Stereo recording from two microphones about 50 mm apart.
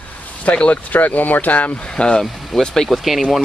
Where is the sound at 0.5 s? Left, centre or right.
Left.